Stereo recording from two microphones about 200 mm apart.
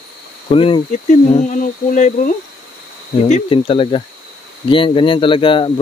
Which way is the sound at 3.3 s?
25° left (ahead or behind).